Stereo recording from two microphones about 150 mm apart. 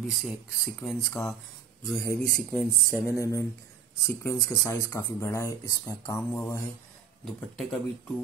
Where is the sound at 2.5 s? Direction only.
10° left (ahead or behind).